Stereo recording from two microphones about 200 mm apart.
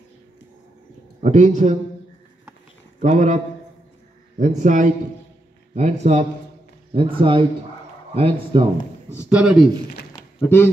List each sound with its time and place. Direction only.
1.2 s a man's voice: 35° right (ahead or behind)
3.0 s a man's voice: 35° right (ahead or behind)
4.4 s a man's voice: 40° right (ahead or behind)
9.1 s speech: 5° right (ahead or behind)
10.4 s speech: 10° left (ahead or behind)